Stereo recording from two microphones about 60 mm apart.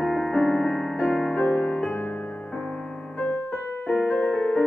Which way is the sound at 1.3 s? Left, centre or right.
Left.